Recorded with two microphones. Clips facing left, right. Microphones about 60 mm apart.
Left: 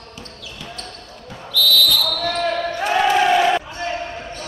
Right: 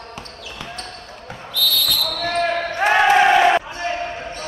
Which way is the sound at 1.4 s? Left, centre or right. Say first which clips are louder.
Left 4 dB; right.